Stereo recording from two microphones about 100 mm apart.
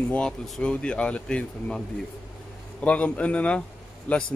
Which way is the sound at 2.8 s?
15° left (ahead or behind).